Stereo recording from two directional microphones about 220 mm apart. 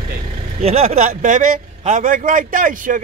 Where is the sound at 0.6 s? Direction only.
30° right (ahead or behind).